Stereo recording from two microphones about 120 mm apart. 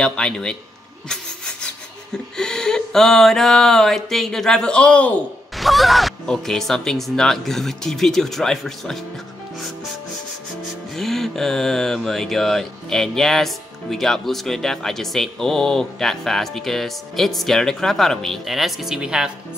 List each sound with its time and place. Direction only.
0.0 s a man's voice: 5° left (ahead or behind)
1.0 s rub: 5° left (ahead or behind)
2.3 s mantra: 5° left (ahead or behind)
11.0 s mantra: 5° left (ahead or behind)